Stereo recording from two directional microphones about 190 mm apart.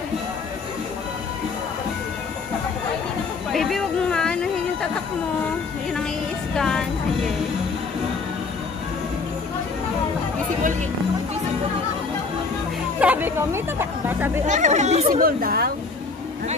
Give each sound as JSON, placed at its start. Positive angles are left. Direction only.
{"t": 3.5, "sound": "a sound", "side_deg": 0}
{"t": 6.5, "sound": "speech", "side_deg": 5}
{"t": 13.0, "sound": "speech", "side_deg": -10}
{"t": 14.4, "sound": "speech", "side_deg": -40}
{"t": 15.2, "sound": "a woman's voice", "side_deg": -55}